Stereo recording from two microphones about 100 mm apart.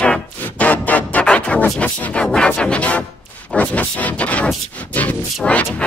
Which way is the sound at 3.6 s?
15° left (ahead or behind).